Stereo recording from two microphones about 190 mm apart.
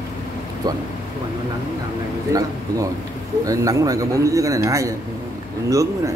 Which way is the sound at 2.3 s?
15° right (ahead or behind).